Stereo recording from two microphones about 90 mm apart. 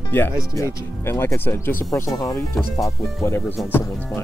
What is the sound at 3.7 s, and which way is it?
Speech, 25° left (ahead or behind).